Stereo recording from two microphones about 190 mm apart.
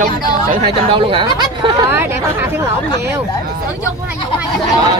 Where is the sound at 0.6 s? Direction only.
30° right (ahead or behind).